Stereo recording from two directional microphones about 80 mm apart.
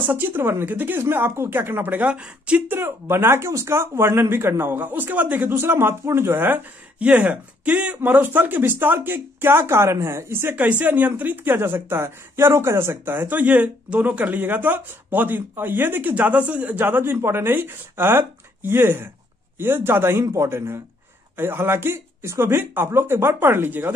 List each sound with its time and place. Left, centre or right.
0.1 s speech: right
2.7 s speech: right
10.5 s speech: centre